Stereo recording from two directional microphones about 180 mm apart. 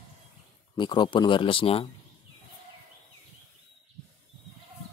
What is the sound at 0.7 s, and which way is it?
Speech, 25° left (ahead or behind).